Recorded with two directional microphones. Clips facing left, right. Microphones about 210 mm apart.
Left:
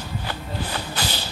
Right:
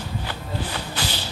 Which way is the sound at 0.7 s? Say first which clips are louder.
Left 1 dB; 40° left (ahead or behind).